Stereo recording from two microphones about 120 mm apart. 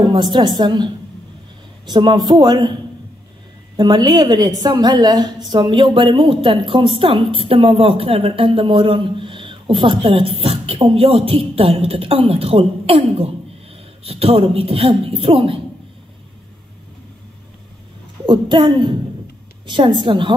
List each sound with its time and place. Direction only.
0.1 s a woman's voice: 40° right (ahead or behind)
3.7 s a woman's voice: 35° right (ahead or behind); by 15.6 s 50° right (ahead or behind)
18.2 s a woman's voice: 45° right (ahead or behind)